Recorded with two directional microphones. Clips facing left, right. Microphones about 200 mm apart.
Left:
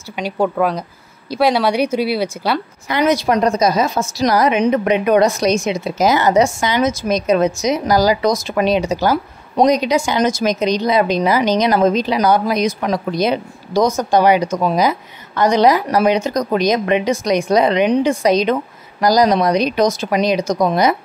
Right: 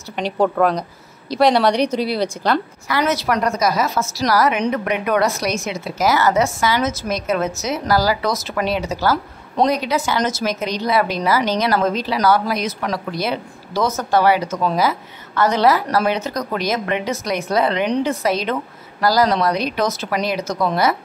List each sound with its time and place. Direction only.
0.1 s speech: 5° left (ahead or behind)
2.9 s a woman's voice: 20° left (ahead or behind)